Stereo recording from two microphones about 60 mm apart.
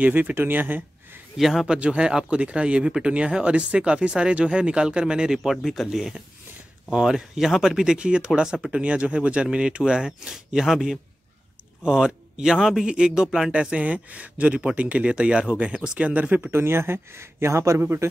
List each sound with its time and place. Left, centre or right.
0.0 s speech: right
1.3 s speech: centre
1.7 s speech: centre
7.8 s speech: centre
16.1 s speech: right
16.4 s speech: right